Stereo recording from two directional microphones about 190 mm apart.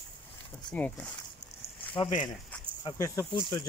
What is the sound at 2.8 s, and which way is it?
Speech, 15° left (ahead or behind).